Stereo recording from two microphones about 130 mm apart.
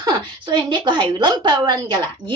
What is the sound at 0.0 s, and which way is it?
A woman's voice, 35° right (ahead or behind).